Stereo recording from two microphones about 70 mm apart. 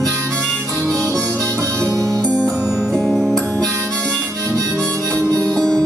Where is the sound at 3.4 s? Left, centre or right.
Right.